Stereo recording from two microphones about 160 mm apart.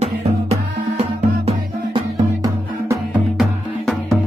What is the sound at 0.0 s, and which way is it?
Music, 40° right (ahead or behind).